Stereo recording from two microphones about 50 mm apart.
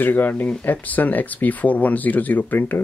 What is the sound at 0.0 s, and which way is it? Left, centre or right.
Speech, left.